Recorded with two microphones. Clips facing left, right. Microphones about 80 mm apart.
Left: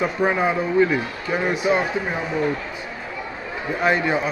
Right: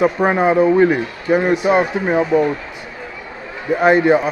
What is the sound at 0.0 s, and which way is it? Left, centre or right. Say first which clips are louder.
A man's voice: right 6 dB; right.